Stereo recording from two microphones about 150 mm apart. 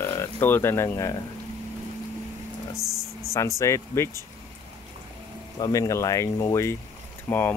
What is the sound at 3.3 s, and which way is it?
Speech, 20° left (ahead or behind).